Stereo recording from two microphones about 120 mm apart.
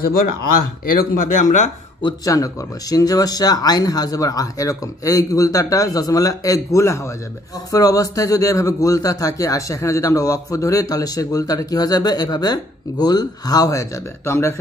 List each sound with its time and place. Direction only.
1.1 s speech: 90° left
2.2 s a man's voice: 30° left (ahead or behind)